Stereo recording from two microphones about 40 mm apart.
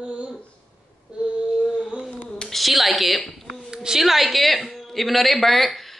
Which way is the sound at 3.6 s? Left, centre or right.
Centre.